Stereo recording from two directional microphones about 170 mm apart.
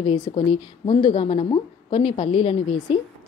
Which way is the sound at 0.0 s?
35° left (ahead or behind).